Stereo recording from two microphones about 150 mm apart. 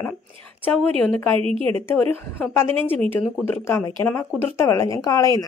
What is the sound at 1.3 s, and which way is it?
Speech, 35° right (ahead or behind).